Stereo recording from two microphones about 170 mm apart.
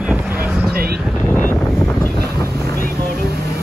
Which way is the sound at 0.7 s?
65° right (ahead or behind).